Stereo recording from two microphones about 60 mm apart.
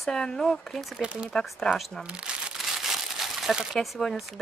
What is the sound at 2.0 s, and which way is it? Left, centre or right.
Speech, centre.